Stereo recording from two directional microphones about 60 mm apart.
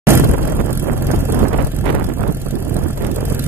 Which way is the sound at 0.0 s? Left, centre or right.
Right.